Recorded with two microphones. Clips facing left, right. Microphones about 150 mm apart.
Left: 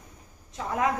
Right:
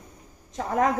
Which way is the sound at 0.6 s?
45° right (ahead or behind).